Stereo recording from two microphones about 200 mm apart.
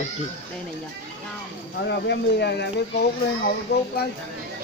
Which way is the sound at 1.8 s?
55° left (ahead or behind).